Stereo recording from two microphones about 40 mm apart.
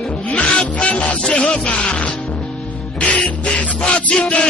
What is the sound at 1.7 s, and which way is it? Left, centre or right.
Speech, left.